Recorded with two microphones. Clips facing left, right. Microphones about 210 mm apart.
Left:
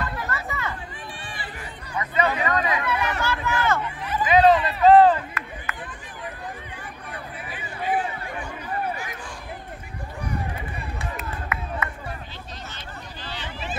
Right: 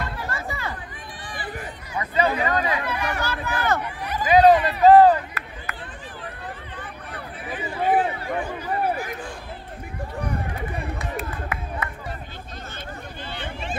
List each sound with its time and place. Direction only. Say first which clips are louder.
0.3 s chatter: even; 30° right (ahead or behind)
1.2 s run: right 3 dB; 25° left (ahead or behind)
2.0 s speech: right 1 dB; 30° right (ahead or behind)
7.5 s a sound: right 5 dB; 50° right (ahead or behind)